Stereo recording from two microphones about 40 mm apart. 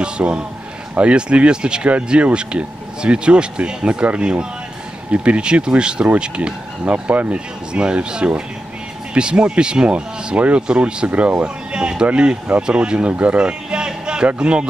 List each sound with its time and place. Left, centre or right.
0.0 s speech: right
6.8 s speech: right
11.1 s speech: right
11.4 s speech: right